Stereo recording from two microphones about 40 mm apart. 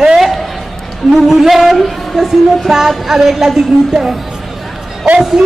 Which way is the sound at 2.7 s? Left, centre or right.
Centre.